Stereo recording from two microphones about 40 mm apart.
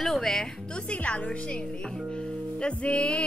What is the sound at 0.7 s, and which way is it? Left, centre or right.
Music, left.